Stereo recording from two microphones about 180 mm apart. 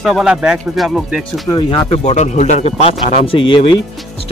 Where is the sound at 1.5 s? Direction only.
25° left (ahead or behind).